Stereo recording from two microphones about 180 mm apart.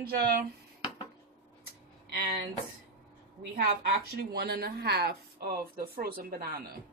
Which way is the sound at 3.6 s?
60° right (ahead or behind).